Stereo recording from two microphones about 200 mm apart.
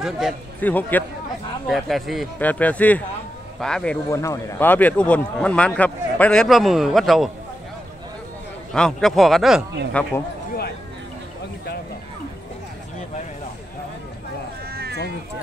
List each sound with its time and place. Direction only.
0.6 s a man's voice: 10° left (ahead or behind)
4.1 s a man's voice: 15° left (ahead or behind)
8.7 s a man's voice: 5° left (ahead or behind)
14.7 s a sound: 50° right (ahead or behind)